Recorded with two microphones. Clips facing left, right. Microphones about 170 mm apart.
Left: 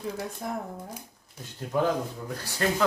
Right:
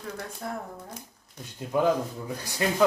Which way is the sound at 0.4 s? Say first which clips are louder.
Even; 20° left (ahead or behind).